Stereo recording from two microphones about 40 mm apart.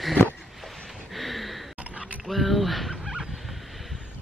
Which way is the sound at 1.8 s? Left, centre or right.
Right.